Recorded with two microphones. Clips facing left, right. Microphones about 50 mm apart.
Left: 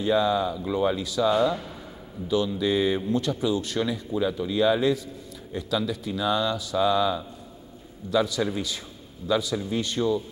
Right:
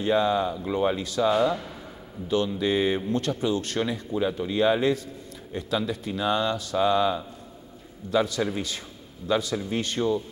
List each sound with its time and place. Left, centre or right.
0.0 s speech: right
1.2 s speech: centre
2.2 s speech: right
4.1 s speech: right